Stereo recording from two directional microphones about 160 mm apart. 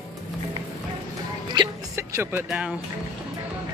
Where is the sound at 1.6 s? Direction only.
30° right (ahead or behind).